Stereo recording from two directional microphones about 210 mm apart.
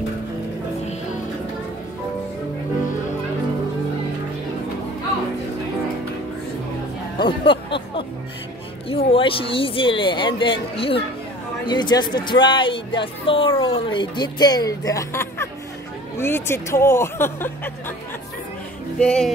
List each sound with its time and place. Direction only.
7.2 s music: 25° left (ahead or behind)
8.8 s speech: 25° left (ahead or behind)
18.9 s speech: 5° left (ahead or behind)